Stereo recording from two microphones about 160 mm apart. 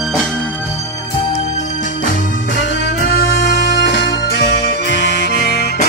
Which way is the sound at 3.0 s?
80° left.